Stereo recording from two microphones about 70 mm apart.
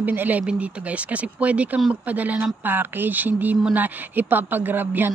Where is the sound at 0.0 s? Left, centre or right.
Right.